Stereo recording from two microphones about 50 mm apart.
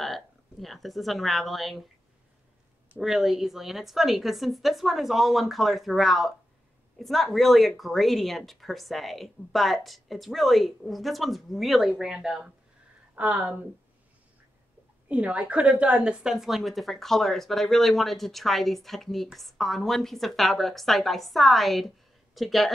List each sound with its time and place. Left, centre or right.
0.0 s a woman's voice: centre
3.0 s speech: centre
13.1 s speech: right
15.0 s speech: right; by 22.7 s centre